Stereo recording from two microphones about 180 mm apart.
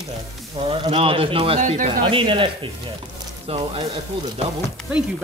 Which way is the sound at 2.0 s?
30° right (ahead or behind).